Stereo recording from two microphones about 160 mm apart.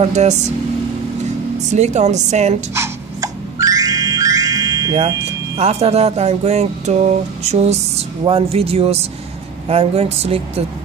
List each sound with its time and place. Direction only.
0.0 s a woman's voice: 45° right (ahead or behind)
1.7 s a woman's voice: 45° right (ahead or behind)
2.8 s music: 20° right (ahead or behind)
5.6 s speech: 40° right (ahead or behind)